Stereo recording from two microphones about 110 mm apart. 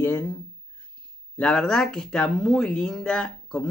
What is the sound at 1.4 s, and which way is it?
Speech, 5° left (ahead or behind).